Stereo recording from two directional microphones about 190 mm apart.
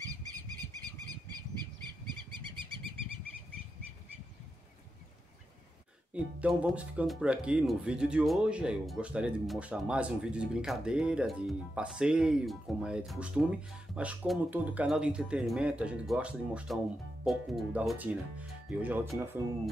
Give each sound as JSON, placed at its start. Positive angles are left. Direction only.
{"t": 2.4, "sound": "bird", "side_deg": -25}
{"t": 6.1, "sound": "speech", "side_deg": -5}